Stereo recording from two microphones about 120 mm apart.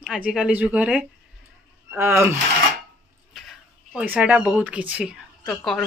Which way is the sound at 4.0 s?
10° right (ahead or behind).